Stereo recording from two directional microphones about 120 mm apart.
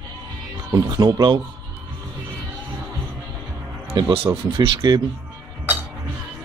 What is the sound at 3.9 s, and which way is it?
Speech, 50° right (ahead or behind).